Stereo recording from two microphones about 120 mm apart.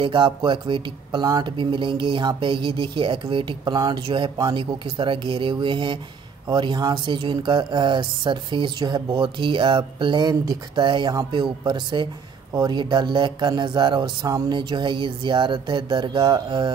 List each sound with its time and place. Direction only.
0.0 s speech: 45° right (ahead or behind)